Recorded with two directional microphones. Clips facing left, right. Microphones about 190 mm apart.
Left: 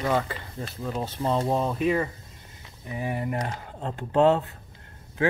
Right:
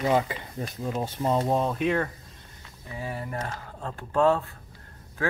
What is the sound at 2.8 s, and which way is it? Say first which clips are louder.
Speech: left 5 dB; 20° left (ahead or behind).